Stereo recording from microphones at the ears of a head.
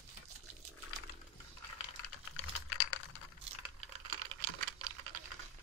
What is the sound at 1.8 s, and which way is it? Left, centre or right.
Computer keyboard, left.